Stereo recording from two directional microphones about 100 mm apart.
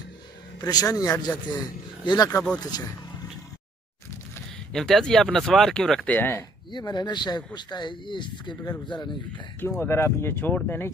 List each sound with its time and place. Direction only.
0.7 s speech: 40° left (ahead or behind)
4.7 s speech: 5° left (ahead or behind)
6.0 s speech: 20° left (ahead or behind)
6.7 s speech: 45° left (ahead or behind)
9.7 s speech: 25° left (ahead or behind)